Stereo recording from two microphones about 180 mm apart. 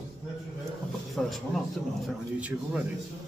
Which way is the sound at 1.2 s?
5° left (ahead or behind).